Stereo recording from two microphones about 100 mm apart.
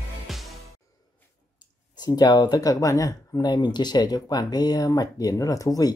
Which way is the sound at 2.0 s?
40° left (ahead or behind).